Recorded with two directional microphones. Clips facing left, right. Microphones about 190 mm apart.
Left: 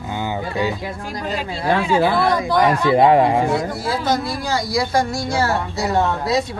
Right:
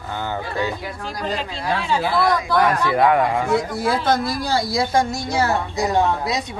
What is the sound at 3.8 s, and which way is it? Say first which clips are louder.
Speech: right 1 dB; 55° right (ahead or behind).